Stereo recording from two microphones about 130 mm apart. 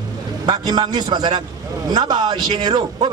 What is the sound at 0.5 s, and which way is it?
A man's voice, 35° right (ahead or behind).